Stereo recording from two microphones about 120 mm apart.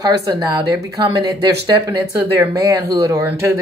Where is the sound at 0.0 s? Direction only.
35° right (ahead or behind).